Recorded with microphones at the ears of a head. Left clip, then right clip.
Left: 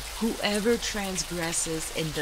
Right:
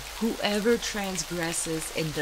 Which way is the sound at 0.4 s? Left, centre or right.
Centre.